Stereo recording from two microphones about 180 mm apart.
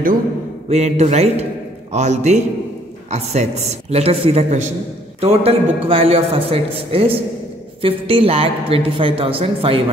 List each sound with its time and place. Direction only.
0.7 s a woman's voice: 35° right (ahead or behind)